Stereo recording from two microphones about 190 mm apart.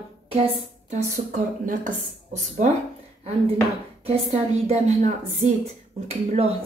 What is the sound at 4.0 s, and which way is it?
A woman's voice, 35° right (ahead or behind).